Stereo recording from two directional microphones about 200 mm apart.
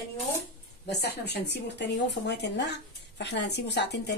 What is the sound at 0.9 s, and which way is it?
Speech, 55° left (ahead or behind).